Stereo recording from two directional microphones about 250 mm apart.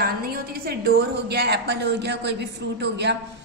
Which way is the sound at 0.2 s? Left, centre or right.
Right.